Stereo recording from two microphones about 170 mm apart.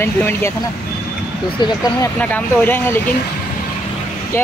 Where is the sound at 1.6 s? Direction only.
20° left (ahead or behind).